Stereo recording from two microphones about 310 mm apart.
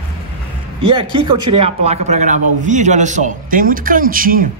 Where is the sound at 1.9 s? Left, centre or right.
Right.